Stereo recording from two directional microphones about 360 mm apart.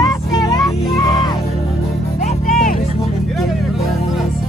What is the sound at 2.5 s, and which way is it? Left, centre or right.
Music, left.